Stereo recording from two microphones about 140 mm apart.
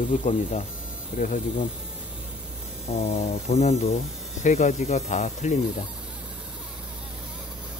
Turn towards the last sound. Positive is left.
turn(degrees=55)  # may be behind; listen again after turning